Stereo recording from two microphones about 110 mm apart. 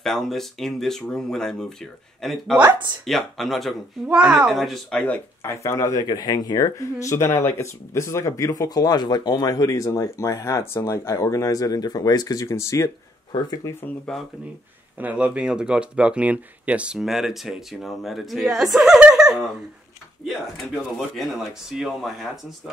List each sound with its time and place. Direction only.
0.0 s speech: 5° left (ahead or behind)
5.4 s speech: 25° left (ahead or behind)
13.3 s speech: 40° left (ahead or behind)
13.8 s speech: 5° left (ahead or behind)
15.0 s speech: 15° right (ahead or behind)